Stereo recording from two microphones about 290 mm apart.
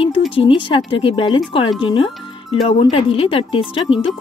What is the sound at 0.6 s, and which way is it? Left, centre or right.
A woman's voice, centre.